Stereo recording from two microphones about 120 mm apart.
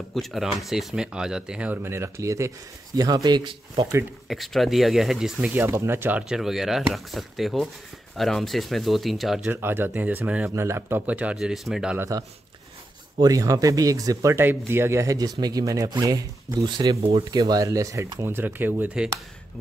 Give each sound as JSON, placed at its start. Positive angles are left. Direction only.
{"t": 0.1, "sound": "speech", "side_deg": 0}
{"t": 4.3, "sound": "speech", "side_deg": 0}
{"t": 9.5, "sound": "speech", "side_deg": -20}
{"t": 10.5, "sound": "speech", "side_deg": -20}
{"t": 11.3, "sound": "speech", "side_deg": 0}
{"t": 12.0, "sound": "speech", "side_deg": -30}